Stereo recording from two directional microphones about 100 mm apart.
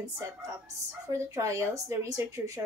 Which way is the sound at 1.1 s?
30° right (ahead or behind).